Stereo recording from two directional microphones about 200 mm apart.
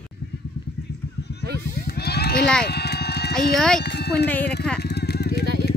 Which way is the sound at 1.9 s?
55° left (ahead or behind).